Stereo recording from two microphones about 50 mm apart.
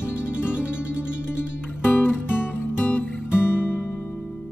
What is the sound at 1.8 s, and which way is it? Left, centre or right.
Music, left.